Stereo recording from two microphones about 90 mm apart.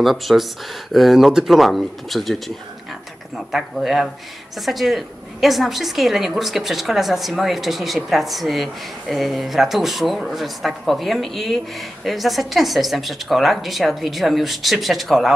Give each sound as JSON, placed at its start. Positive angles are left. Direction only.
{"t": 0.0, "sound": "a woman's voice", "side_deg": 0}